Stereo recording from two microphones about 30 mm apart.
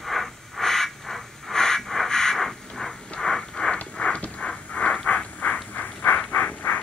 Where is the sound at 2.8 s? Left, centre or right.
Left.